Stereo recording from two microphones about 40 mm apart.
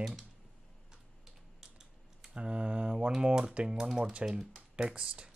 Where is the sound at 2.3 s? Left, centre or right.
Right.